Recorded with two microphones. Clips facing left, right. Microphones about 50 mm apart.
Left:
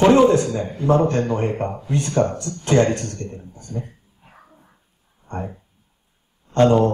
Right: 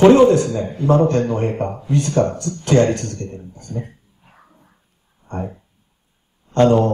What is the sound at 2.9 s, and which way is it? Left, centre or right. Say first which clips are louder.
Speech: right 2 dB; left.